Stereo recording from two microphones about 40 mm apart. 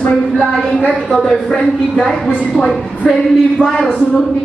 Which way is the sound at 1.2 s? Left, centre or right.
Centre.